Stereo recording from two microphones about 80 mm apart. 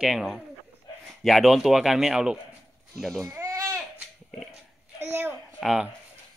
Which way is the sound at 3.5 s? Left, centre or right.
Right.